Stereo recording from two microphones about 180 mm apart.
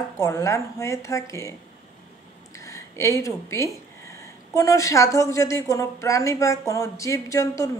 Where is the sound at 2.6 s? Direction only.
15° left (ahead or behind).